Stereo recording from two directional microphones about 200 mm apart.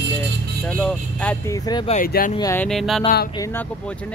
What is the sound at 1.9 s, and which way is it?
Speech, 45° left (ahead or behind).